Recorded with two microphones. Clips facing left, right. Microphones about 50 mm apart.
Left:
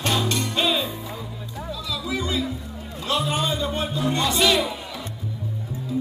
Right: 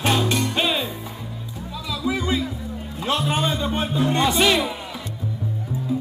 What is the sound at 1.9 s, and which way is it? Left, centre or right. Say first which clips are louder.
Music: right 4 dB; right.